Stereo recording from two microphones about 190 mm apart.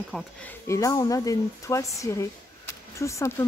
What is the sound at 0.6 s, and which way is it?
Speech, 15° left (ahead or behind).